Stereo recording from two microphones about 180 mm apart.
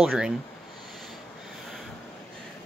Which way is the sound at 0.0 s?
5° right (ahead or behind).